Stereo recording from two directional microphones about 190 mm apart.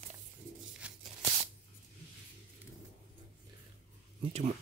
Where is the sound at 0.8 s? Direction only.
5° right (ahead or behind).